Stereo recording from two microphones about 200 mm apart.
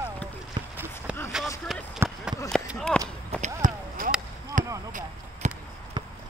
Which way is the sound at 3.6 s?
45° right (ahead or behind).